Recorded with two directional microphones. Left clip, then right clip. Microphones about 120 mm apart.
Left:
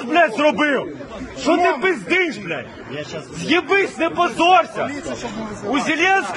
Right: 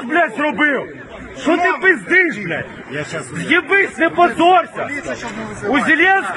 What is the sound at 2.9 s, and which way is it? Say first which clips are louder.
A man's voice: right 5 dB; 25° left (ahead or behind).